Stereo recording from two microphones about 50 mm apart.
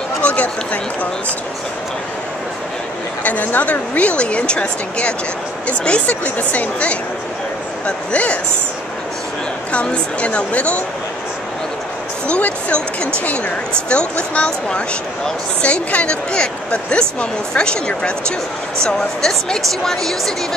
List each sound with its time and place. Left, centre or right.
0.2 s a sound: left
3.3 s a woman's voice: left
9.7 s a woman's voice: left
12.3 s a woman's voice: left; by 20.3 s centre